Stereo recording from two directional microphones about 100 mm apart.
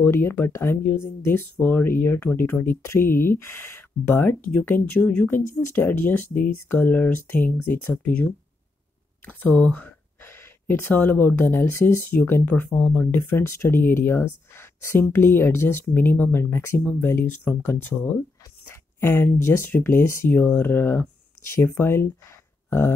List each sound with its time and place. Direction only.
0.0 s speech: 25° left (ahead or behind)
18.9 s speech: 20° left (ahead or behind)